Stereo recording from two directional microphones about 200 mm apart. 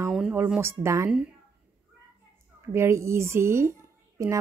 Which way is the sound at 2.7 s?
15° right (ahead or behind).